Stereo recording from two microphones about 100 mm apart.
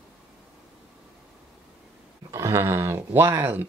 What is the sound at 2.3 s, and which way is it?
Speech, 30° right (ahead or behind).